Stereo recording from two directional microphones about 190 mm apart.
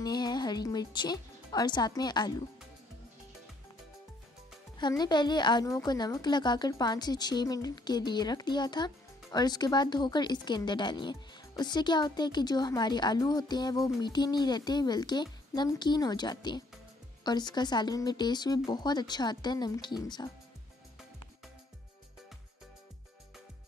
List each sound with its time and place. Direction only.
0.0 s music: 20° left (ahead or behind)
4.7 s a woman's voice: 20° left (ahead or behind)